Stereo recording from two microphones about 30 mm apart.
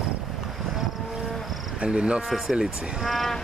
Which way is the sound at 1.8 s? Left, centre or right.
Right.